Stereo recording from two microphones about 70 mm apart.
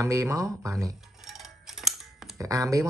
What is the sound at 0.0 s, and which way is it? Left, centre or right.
Speech, right.